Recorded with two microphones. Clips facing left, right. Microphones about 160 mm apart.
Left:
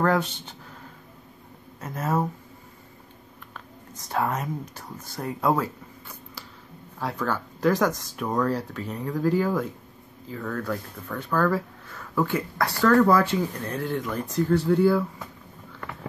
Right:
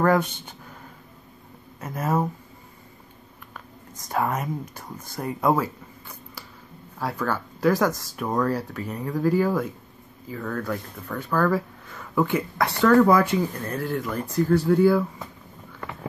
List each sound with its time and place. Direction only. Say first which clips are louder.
1.8 s speech: right 1 dB; 10° right (ahead or behind)
4.1 s speech: right 1 dB; 10° right (ahead or behind)
15.8 s a sound: right 2 dB; 20° right (ahead or behind)